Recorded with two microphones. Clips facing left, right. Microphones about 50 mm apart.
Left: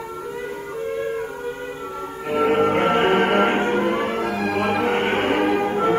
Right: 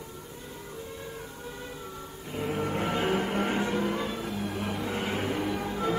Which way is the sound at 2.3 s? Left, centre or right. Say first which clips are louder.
Left 13 dB; left.